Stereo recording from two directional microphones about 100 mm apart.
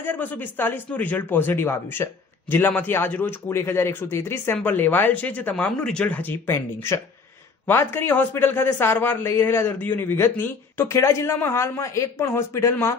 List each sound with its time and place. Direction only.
0.0 s a man's voice: 20° left (ahead or behind)